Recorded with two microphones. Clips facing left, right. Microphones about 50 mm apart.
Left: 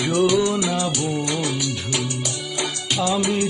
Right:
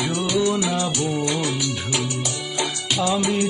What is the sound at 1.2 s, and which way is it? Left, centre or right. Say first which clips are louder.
Music of bollywood: even; centre.